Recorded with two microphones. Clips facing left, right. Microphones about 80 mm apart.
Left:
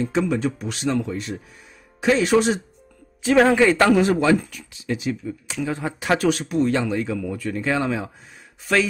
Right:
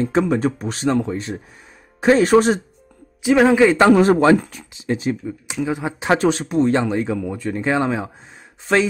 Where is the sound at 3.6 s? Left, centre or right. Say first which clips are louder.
Right 3 dB; centre.